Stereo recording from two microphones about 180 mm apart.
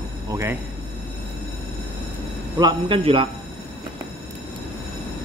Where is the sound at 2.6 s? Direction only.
25° right (ahead or behind).